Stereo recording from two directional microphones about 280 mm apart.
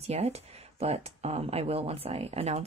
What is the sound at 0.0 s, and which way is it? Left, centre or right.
Speech, right.